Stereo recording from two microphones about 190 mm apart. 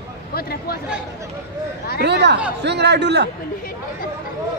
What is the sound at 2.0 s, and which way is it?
A man's voice, 65° right (ahead or behind).